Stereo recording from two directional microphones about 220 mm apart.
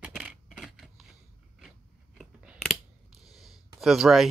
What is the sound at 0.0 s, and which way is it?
Coin, centre (ahead or behind).